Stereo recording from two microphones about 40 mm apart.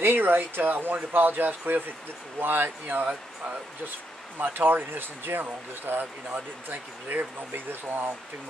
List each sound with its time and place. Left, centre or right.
0.0 s speech: right
4.4 s speech: right
6.3 s speech: right